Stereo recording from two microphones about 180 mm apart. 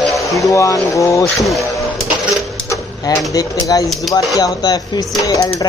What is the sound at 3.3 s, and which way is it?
Speech, 20° left (ahead or behind).